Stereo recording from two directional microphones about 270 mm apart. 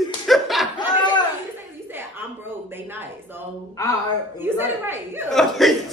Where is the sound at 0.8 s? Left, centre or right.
Centre.